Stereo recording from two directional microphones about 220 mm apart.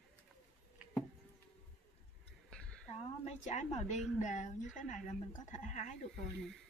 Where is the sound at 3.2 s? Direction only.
30° left (ahead or behind).